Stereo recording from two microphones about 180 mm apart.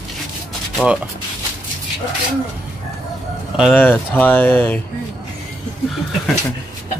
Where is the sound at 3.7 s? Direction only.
10° left (ahead or behind).